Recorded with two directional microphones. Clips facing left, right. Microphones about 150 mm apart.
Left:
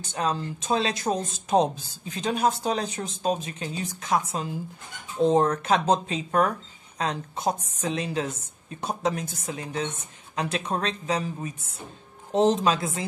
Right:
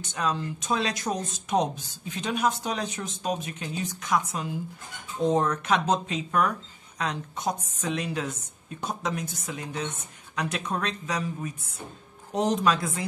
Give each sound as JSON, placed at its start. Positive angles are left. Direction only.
{"t": 0.0, "sound": "speech", "side_deg": 30}